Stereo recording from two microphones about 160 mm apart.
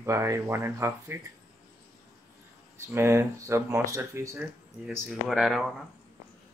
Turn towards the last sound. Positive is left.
turn(degrees=0)  # may be behind; listen again after turning